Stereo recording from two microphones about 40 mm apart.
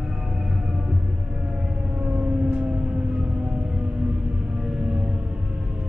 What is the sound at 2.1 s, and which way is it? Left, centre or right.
Siren, right.